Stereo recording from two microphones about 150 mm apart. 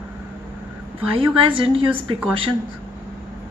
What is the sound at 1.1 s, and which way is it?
Speech, 35° right (ahead or behind).